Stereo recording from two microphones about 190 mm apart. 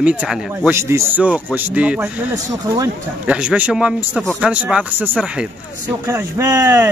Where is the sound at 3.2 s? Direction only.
5° right (ahead or behind).